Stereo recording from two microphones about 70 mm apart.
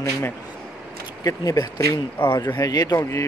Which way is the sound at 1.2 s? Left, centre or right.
Left.